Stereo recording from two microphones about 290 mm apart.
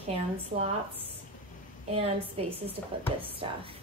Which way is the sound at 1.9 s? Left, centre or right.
Right.